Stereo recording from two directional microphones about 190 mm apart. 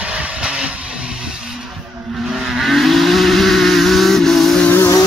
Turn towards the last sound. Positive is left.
turn(degrees=10)  # may be behind; listen again after turning